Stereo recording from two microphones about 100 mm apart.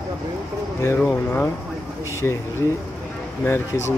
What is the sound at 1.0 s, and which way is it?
Speech, 10° left (ahead or behind).